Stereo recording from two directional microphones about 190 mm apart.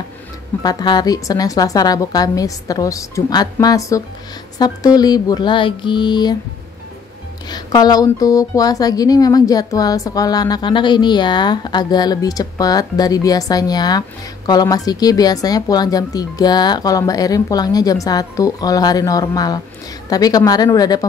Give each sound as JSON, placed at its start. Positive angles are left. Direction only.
{"t": 0.6, "sound": "speech", "side_deg": 20}
{"t": 7.4, "sound": "speech", "side_deg": 20}